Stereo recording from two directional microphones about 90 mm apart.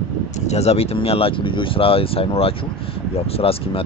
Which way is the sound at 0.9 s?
90° left.